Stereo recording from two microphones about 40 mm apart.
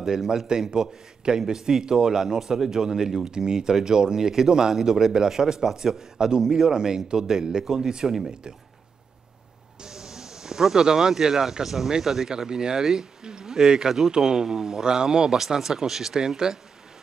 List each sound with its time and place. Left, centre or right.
0.0 s speech: centre
9.8 s speech: centre